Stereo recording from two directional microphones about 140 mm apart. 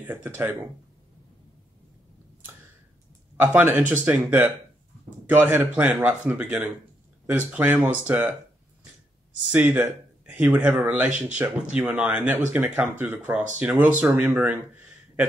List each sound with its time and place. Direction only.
0.0 s speech: 15° right (ahead or behind)
3.3 s speech: 10° right (ahead or behind)
9.5 s speech: 10° right (ahead or behind)